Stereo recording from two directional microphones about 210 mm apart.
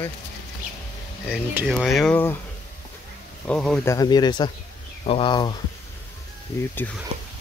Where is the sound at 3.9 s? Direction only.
20° left (ahead or behind).